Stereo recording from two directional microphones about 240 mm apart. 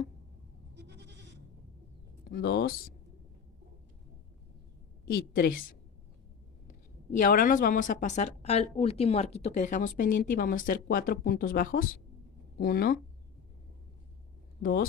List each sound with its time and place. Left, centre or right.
0.7 s goat: right
2.3 s speech: left
5.3 s speech: left
7.2 s a woman's voice: left
14.6 s speech: left